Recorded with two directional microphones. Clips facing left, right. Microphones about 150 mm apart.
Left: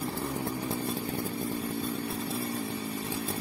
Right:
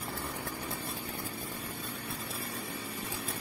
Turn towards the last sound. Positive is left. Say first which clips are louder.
# left 6 dB
turn(degrees=25)  # may be behind; listen again after turning